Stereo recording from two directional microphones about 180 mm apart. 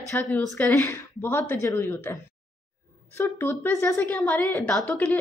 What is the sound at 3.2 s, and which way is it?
A woman's voice, 15° left (ahead or behind).